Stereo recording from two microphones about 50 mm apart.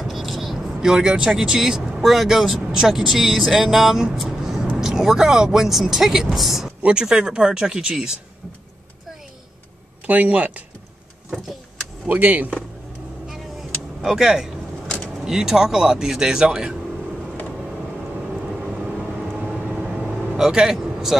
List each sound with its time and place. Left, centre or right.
0.0 s speech: centre
4.2 s a sound: centre
4.7 s speech: centre
6.8 s speech: centre
10.0 s speech: right
11.2 s vehicle: centre
12.1 s speech: right
13.3 s a sound: centre
15.1 s speech: centre
18.3 s vehicle: centre